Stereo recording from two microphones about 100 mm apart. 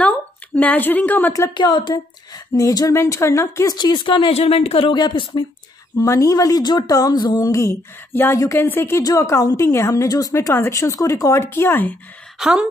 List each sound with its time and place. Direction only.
0.6 s a woman's voice: 15° left (ahead or behind)
1.5 s speech: 50° left (ahead or behind); by 3.7 s 30° left (ahead or behind)
3.7 s speech: 50° left (ahead or behind)
4.3 s speech: 85° left; by 5.4 s 55° left (ahead or behind)
5.9 s speech: 30° left (ahead or behind)
12.4 s speech: 5° right (ahead or behind)